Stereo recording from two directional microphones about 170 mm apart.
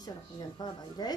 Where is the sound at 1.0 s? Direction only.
25° left (ahead or behind).